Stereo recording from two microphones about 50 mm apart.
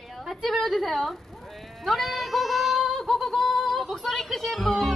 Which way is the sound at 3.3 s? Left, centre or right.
Centre.